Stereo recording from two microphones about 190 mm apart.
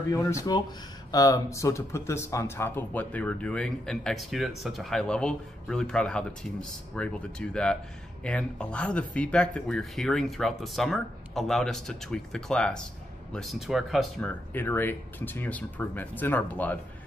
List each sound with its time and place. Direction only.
0.1 s speech: 15° left (ahead or behind); by 14.3 s centre (ahead or behind)
14.5 s speech: 10° left (ahead or behind)